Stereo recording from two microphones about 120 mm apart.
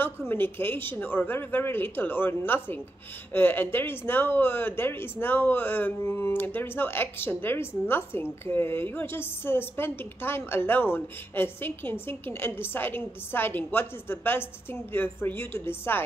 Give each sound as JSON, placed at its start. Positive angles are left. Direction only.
{"t": 0.3, "sound": "speech", "side_deg": 20}